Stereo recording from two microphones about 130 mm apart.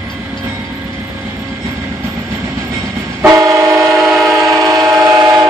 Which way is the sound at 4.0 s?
Centre (ahead or behind).